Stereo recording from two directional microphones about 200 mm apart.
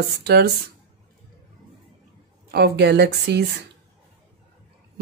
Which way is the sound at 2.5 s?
55° right (ahead or behind).